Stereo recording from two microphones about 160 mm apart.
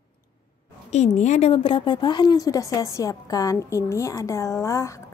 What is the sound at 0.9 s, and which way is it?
A woman's voice, 45° left (ahead or behind).